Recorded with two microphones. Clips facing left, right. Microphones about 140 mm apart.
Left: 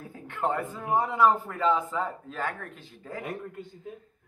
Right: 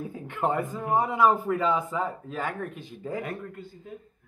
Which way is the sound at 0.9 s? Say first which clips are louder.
Right 1 dB; 15° right (ahead or behind).